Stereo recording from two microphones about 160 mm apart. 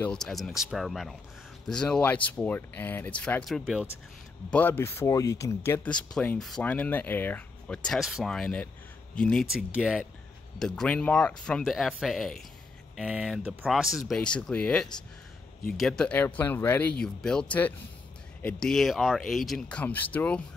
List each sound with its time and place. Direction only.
0.0 s speech: 5° left (ahead or behind)
4.5 s speech: 10° left (ahead or behind)
6.1 s speech: 5° left (ahead or behind)